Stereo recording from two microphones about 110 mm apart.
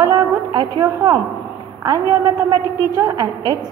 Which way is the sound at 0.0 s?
40° right (ahead or behind).